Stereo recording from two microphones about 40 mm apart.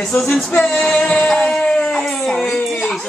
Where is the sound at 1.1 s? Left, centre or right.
Left.